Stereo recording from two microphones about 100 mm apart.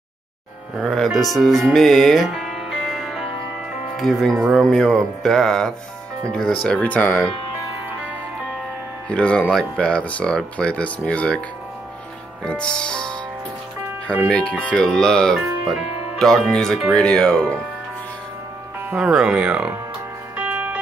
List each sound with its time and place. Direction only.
0.8 s speech: centre (ahead or behind)
6.8 s speech: 15° left (ahead or behind)
9.1 s speech: 10° left (ahead or behind)
12.4 s speech: 10° left (ahead or behind)
18.9 s speech: 10° right (ahead or behind)
20.3 s music: 15° right (ahead or behind)